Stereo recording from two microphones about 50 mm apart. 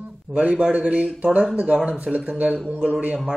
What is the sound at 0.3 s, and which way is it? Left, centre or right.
A man's voice, right.